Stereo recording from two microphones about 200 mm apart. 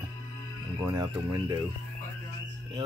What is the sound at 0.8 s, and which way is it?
Speech, 10° right (ahead or behind).